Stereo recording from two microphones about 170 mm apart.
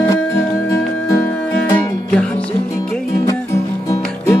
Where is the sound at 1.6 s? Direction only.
20° left (ahead or behind).